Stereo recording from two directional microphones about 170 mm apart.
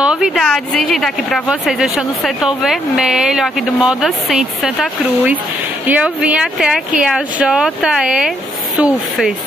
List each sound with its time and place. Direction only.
0.0 s speech: 5° right (ahead or behind)